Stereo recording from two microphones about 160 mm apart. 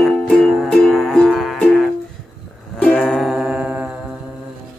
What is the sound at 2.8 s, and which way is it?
Music, 5° left (ahead or behind).